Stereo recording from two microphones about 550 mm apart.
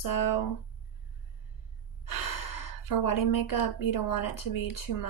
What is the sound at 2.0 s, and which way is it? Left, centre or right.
Speech, left.